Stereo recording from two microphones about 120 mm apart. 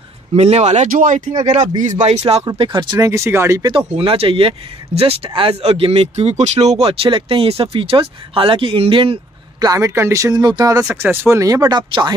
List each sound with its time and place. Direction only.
0.4 s speech: 65° right (ahead or behind)
2.5 s speech: 40° right (ahead or behind)
3.0 s speech: 25° right (ahead or behind)
3.6 s speech: 50° right (ahead or behind)
9.6 s speech: 30° right (ahead or behind)